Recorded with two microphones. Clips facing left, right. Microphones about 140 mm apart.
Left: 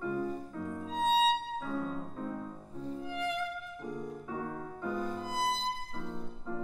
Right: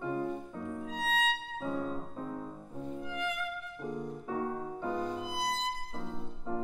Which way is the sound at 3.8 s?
Centre (ahead or behind).